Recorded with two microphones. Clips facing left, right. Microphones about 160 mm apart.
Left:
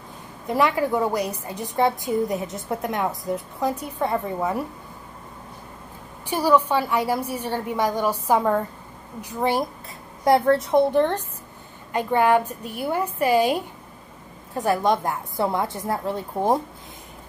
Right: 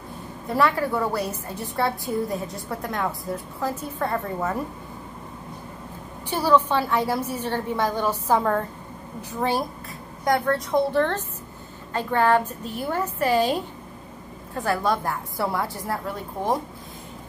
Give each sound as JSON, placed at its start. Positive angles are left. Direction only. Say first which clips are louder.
{"t": 0.5, "sound": "a woman's voice", "louder": "left 1 dB", "side_deg": 15}
{"t": 6.3, "sound": "a woman's voice", "louder": "left 1 dB", "side_deg": 10}
{"t": 10.2, "sound": "a woman's voice", "louder": "left 5 dB", "side_deg": 30}